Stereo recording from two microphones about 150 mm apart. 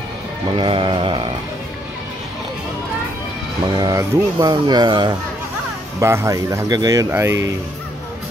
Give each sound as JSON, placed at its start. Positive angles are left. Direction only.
{"t": 0.6, "sound": "a sound", "side_deg": -35}
{"t": 3.6, "sound": "speech", "side_deg": -25}
{"t": 5.9, "sound": "speech", "side_deg": -20}